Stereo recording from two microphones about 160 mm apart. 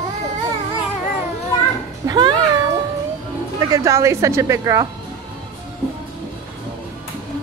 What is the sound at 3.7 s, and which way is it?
A woman's voice, 20° right (ahead or behind).